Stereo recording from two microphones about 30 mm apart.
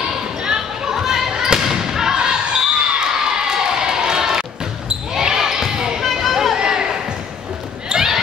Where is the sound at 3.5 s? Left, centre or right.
Right.